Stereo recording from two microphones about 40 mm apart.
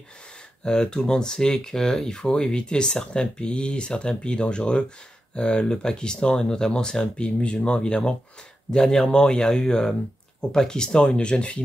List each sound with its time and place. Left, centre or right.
0.7 s speech: centre
2.3 s speech: left
8.6 s speech: centre